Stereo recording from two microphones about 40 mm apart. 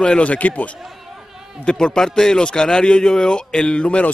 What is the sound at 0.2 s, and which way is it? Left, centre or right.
Speech, left.